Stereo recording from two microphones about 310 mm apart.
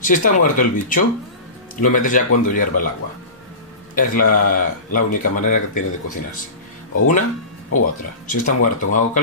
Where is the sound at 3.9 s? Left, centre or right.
Left.